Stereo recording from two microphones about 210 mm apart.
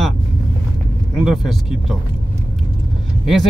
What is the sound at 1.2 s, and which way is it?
Speech, centre (ahead or behind).